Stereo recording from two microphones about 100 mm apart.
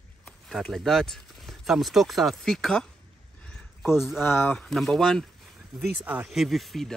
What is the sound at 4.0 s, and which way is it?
Speech, centre (ahead or behind).